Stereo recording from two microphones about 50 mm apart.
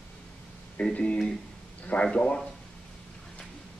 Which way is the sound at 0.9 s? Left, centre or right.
Left.